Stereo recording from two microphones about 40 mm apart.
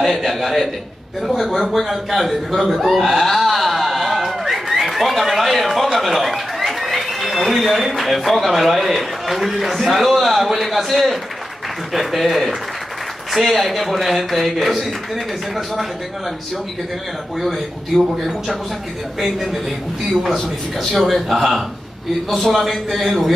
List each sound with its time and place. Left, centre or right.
0.0 s a man's voice: centre
17.4 s a man's voice: centre